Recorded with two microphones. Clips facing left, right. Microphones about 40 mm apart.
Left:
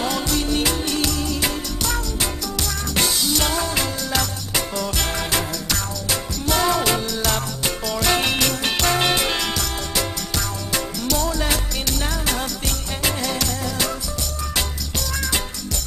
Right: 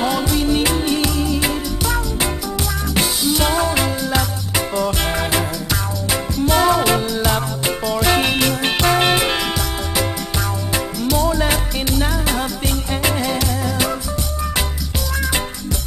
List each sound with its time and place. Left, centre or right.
0.0 s music: centre
10.7 s music: centre